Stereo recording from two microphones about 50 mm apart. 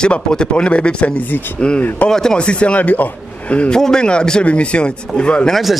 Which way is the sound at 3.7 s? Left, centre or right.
Centre.